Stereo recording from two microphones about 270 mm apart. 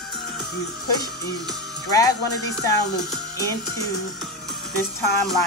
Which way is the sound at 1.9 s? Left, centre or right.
Centre.